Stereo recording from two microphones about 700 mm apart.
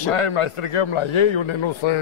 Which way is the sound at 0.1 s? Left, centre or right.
Left.